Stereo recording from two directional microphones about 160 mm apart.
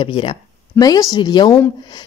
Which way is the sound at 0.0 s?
30° left (ahead or behind).